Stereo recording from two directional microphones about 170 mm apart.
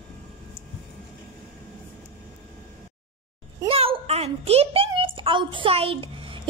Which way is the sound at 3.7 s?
35° right (ahead or behind).